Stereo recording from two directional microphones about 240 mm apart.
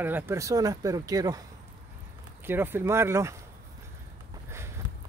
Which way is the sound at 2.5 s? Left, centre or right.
Centre.